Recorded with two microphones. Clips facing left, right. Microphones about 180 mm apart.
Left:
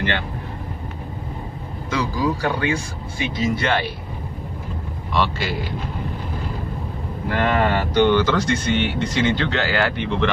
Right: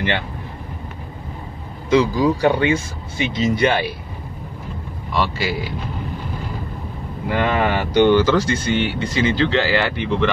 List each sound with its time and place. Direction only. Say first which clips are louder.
1.9 s speech: right 7 dB; 20° right (ahead or behind)
5.1 s speech: right 1 dB; 5° right (ahead or behind)
7.2 s speech: right 1 dB; 10° right (ahead or behind)